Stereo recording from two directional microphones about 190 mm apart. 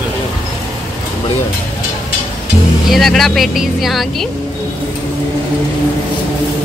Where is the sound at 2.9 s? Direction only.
Centre (ahead or behind).